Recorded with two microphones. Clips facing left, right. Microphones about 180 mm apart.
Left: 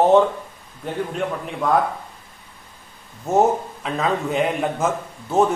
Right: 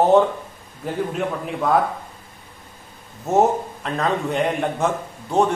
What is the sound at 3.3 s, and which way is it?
A man's voice, centre (ahead or behind).